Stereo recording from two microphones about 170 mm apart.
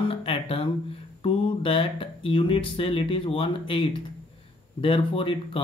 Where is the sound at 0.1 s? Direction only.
35° left (ahead or behind).